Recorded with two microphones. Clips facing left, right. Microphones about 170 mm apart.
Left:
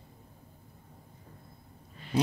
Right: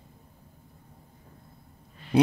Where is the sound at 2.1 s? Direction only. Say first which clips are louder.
Right 7 dB; 60° right (ahead or behind).